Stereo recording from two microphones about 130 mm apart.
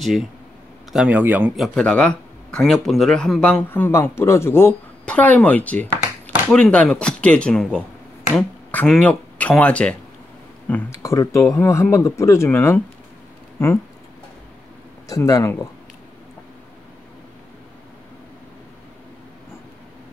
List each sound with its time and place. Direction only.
0.0 s speech: centre (ahead or behind)
0.9 s speech: 10° right (ahead or behind)
1.6 s a man's voice: 10° left (ahead or behind)
11.0 s speech: 25° left (ahead or behind)
15.0 s speech: 25° left (ahead or behind)